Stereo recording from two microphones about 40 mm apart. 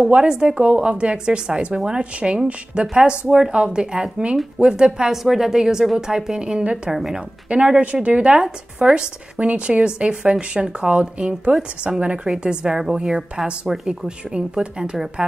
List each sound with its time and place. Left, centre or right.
0.0 s speech: right
0.3 s a woman's voice: centre
0.6 s speech: right
3.3 s a woman's voice: centre
5.1 s a woman's voice: centre; by 6.8 s right
6.9 s a woman's voice: centre
7.4 s speech: right
11.9 s a woman's voice: centre
13.8 s speech: right